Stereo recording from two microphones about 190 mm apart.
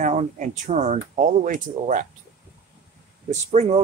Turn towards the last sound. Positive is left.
turn(degrees=-35)  # may be behind; listen again after turning